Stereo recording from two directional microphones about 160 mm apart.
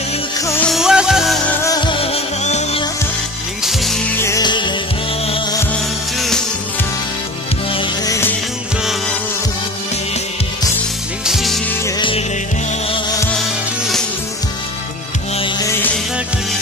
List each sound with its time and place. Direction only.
0.7 s music: 5° right (ahead or behind)
1.6 s music: 25° left (ahead or behind); by 2.8 s 40° left (ahead or behind)
3.6 s music: centre (ahead or behind)
4.2 s music: 20° left (ahead or behind)
6.1 s music: centre (ahead or behind)
7.7 s music: 25° left (ahead or behind)
11.2 s music: centre (ahead or behind)